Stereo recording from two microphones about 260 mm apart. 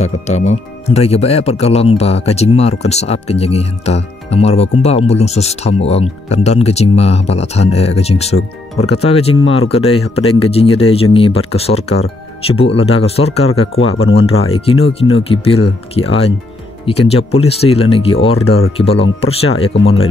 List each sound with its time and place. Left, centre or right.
0.0 s speech: left
9.4 s speech: left
9.7 s speech: left